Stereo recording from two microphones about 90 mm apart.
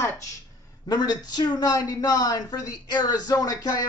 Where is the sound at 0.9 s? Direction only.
50° left (ahead or behind).